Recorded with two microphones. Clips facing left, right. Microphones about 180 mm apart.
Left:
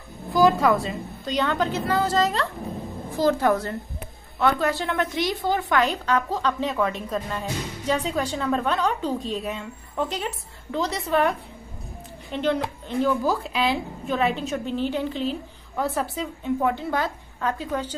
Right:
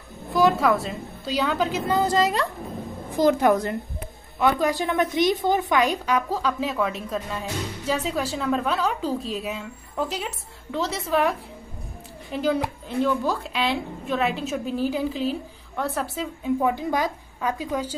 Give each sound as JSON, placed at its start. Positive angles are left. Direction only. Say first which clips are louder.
{"t": 0.3, "sound": "a woman's voice", "louder": "left 1 dB", "side_deg": 0}